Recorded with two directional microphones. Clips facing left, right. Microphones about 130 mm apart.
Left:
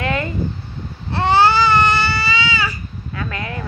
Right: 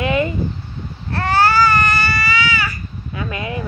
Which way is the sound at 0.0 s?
20° right (ahead or behind).